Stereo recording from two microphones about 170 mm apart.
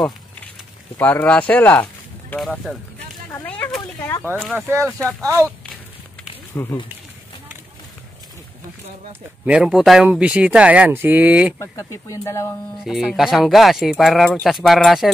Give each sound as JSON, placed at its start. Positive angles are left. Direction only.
{"t": 0.9, "sound": "speech", "side_deg": 10}
{"t": 3.3, "sound": "a sound", "side_deg": 10}
{"t": 4.4, "sound": "speech", "side_deg": -10}
{"t": 6.5, "sound": "speech", "side_deg": 15}
{"t": 9.5, "sound": "speech", "side_deg": -5}
{"t": 11.6, "sound": "speech", "side_deg": 15}
{"t": 12.8, "sound": "speech", "side_deg": 0}